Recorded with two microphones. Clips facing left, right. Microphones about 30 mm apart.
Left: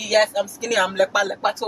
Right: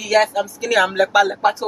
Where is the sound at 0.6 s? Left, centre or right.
Centre.